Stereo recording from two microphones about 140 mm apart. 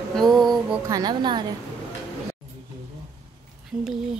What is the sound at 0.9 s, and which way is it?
Speech, 30° right (ahead or behind).